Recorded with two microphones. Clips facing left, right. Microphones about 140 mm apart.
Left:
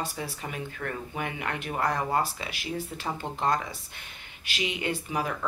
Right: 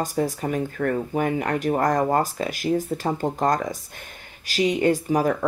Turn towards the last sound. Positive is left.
turn(degrees=-40)  # may be behind; listen again after turning